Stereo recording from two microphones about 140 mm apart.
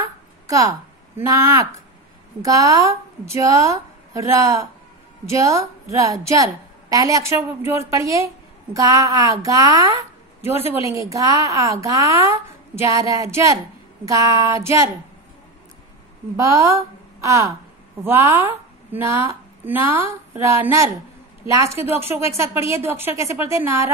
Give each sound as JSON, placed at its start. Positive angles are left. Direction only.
{"t": 0.5, "sound": "a woman's voice", "side_deg": -25}
{"t": 16.3, "sound": "a woman's voice", "side_deg": -20}